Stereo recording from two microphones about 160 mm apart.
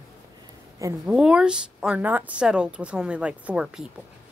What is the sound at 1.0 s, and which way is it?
A woman's voice, 5° right (ahead or behind).